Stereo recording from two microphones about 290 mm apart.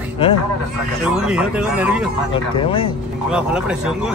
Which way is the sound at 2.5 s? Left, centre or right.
Centre.